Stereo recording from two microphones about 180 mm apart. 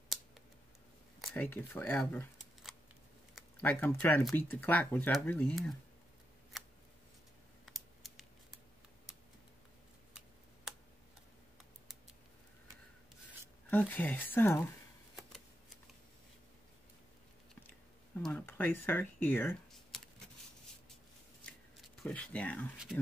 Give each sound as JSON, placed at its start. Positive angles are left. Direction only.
{"t": 1.2, "sound": "speech", "side_deg": 10}
{"t": 3.6, "sound": "speech", "side_deg": 10}
{"t": 6.5, "sound": "scissors", "side_deg": 0}
{"t": 7.6, "sound": "computer keyboard", "side_deg": 0}
{"t": 13.7, "sound": "speech", "side_deg": 10}
{"t": 15.1, "sound": "shuffling cards", "side_deg": 0}
{"t": 18.2, "sound": "speech", "side_deg": 10}
{"t": 21.7, "sound": "speech", "side_deg": 5}